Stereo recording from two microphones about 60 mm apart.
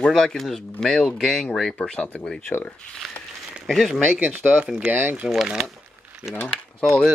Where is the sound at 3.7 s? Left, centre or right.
Centre.